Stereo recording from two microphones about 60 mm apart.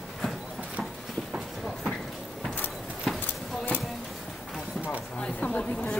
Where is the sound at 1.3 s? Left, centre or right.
Centre.